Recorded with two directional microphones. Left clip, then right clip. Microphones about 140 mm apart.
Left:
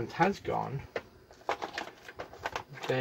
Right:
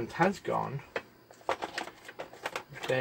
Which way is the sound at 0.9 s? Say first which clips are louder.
Right 1 dB; centre (ahead or behind).